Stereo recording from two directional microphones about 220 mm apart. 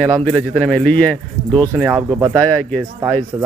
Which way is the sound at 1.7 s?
10° right (ahead or behind).